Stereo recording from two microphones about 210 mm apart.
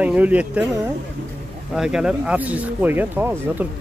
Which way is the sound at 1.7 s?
5° right (ahead or behind).